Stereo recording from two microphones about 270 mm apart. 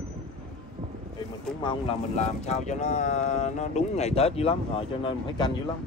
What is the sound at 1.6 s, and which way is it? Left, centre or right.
Speech, centre.